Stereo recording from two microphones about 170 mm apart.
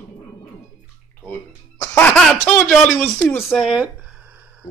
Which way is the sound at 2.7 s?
Centre (ahead or behind).